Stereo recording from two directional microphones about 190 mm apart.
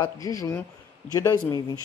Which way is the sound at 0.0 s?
15° left (ahead or behind).